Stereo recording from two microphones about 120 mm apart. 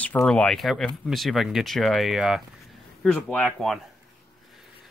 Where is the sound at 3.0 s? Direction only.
10° left (ahead or behind).